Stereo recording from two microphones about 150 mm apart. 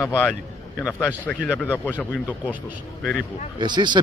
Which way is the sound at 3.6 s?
30° right (ahead or behind).